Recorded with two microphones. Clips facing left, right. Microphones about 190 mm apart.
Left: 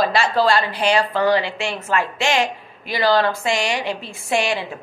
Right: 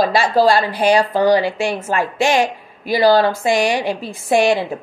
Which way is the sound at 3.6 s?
15° right (ahead or behind).